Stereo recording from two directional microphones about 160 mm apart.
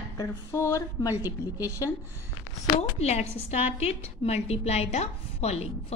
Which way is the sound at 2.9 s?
45° left (ahead or behind).